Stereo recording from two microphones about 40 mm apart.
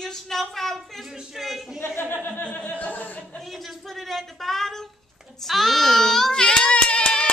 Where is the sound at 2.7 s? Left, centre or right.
Left.